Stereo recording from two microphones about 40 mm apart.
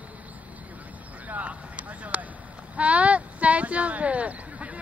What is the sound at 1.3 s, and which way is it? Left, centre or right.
Vehicle, right.